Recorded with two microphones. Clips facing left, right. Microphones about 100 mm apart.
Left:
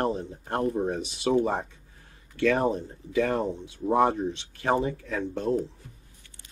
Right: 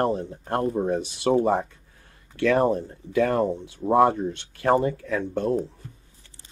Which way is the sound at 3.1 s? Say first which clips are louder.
Right 4 dB; 55° right (ahead or behind).